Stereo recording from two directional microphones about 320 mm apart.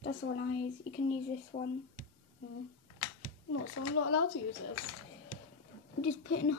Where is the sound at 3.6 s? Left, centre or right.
Left.